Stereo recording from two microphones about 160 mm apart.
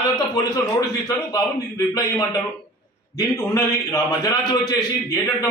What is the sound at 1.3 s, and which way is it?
Speech, 20° left (ahead or behind).